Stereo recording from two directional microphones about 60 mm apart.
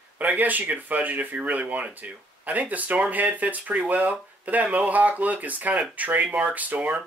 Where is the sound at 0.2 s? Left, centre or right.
Right.